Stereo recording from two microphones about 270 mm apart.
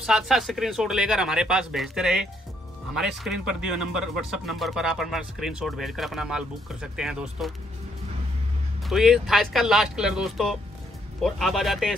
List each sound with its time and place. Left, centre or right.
0.0 s speech: centre
8.8 s speech: centre